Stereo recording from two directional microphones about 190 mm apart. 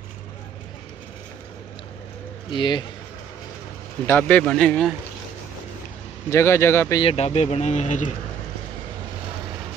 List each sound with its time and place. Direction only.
2.5 s speech: 25° left (ahead or behind)
4.1 s speech: 5° left (ahead or behind)
6.3 s speech: 15° left (ahead or behind)
7.0 s speech: 30° left (ahead or behind)